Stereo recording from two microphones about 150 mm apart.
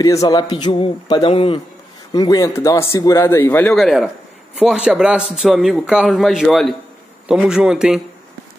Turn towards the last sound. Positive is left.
turn(degrees=-5)  # may be behind; listen again after turning